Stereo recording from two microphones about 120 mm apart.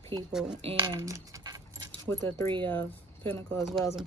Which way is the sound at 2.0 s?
20° left (ahead or behind).